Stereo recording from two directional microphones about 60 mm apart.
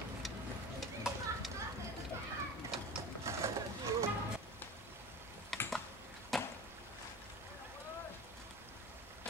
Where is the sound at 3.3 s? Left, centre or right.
Right.